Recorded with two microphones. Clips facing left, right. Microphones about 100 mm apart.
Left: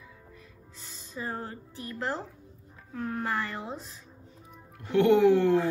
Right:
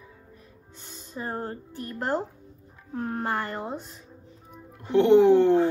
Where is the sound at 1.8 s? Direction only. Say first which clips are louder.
Right 5 dB; 50° right (ahead or behind).